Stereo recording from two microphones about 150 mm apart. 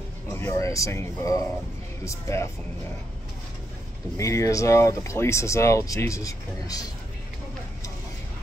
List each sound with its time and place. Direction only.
0.3 s speech: 20° left (ahead or behind)
4.2 s speech: 20° left (ahead or behind)